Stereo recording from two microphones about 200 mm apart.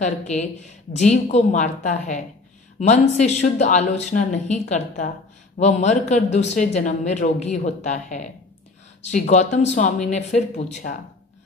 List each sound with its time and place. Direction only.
0.0 s speech: 35° left (ahead or behind)